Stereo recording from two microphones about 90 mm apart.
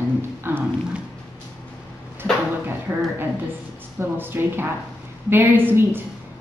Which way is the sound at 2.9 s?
25° right (ahead or behind).